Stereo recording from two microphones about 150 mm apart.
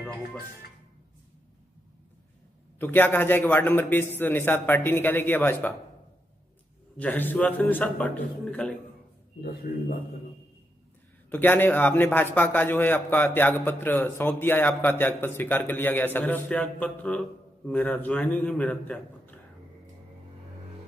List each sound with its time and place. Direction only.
2.8 s a man's voice: 15° left (ahead or behind)
7.0 s a man's voice: 10° left (ahead or behind)
9.4 s a man's voice: 85° left
11.2 s a man's voice: 10° left (ahead or behind)